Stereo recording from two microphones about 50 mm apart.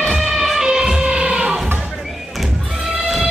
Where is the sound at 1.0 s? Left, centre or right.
Centre.